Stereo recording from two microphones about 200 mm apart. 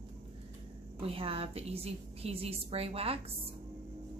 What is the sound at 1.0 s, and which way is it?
A woman's voice, 30° right (ahead or behind).